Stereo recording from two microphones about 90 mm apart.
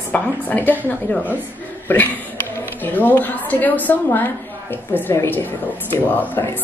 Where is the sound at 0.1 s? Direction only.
20° left (ahead or behind).